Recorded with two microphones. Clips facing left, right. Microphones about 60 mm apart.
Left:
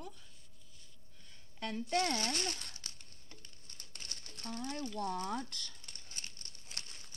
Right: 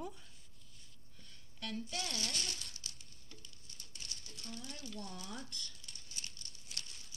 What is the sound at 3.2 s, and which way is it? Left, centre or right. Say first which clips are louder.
Crumpling: even; left.